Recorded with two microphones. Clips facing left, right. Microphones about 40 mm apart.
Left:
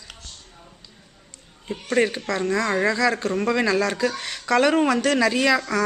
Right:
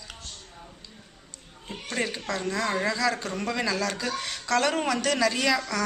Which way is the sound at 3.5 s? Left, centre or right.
Left.